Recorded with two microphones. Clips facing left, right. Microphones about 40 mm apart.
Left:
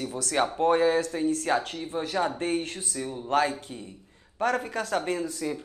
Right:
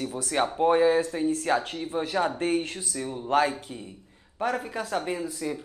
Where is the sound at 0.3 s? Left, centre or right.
Centre.